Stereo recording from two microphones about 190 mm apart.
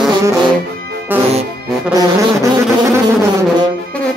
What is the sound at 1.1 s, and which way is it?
Music, 10° right (ahead or behind).